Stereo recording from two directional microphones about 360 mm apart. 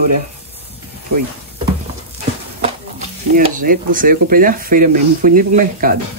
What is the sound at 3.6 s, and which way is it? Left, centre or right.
Speech, right.